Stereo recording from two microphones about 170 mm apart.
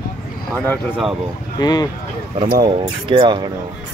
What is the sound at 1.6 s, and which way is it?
Speech, 25° left (ahead or behind).